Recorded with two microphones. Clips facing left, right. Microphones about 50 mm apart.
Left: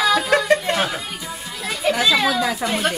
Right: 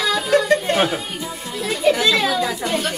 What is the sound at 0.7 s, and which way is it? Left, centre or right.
Speech, centre.